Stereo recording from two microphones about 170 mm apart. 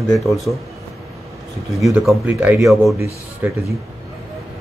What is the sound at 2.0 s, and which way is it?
Speech, 10° right (ahead or behind).